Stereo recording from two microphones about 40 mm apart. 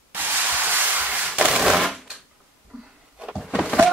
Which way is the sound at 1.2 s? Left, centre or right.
Right.